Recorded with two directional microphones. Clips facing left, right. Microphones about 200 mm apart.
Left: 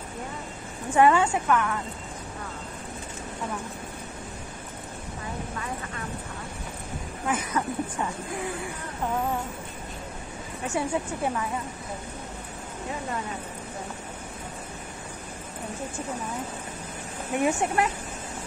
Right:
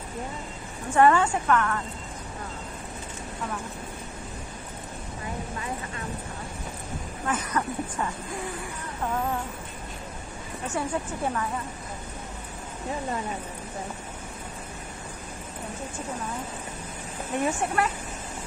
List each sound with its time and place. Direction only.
0.9 s a woman's voice: 10° left (ahead or behind)
7.2 s a woman's voice: 10° left (ahead or behind)
10.7 s a woman's voice: 10° left (ahead or behind)
17.4 s a woman's voice: 15° left (ahead or behind)